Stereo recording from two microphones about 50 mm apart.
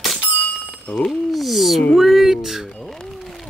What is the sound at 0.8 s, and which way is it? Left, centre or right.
Speech, centre.